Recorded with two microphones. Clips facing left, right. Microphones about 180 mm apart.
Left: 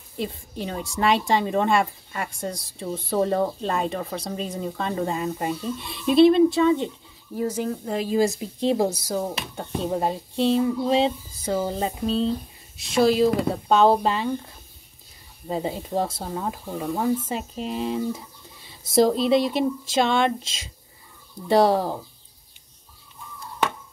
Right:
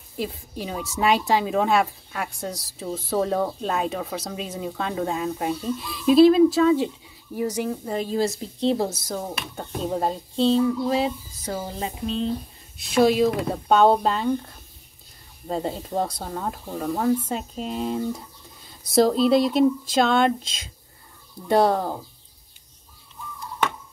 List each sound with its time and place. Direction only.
0.2 s speech: centre (ahead or behind)
8.1 s speech: 10° left (ahead or behind)
10.9 s a sound: 25° left (ahead or behind)
12.7 s speech: centre (ahead or behind)
15.4 s speech: 5° left (ahead or behind)